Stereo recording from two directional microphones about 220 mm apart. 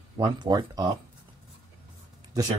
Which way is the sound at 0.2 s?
20° right (ahead or behind).